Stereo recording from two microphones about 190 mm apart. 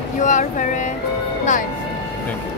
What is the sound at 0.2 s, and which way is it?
Speech, 40° left (ahead or behind).